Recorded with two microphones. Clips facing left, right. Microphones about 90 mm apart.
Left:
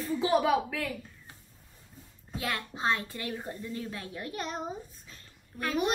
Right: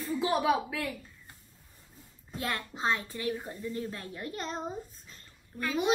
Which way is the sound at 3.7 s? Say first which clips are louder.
Right 1 dB; 35° right (ahead or behind).